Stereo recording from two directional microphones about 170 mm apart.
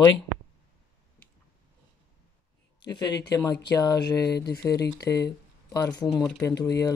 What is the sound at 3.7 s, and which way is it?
Speech, 20° left (ahead or behind).